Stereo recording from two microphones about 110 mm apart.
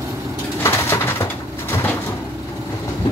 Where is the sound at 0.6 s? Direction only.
25° left (ahead or behind).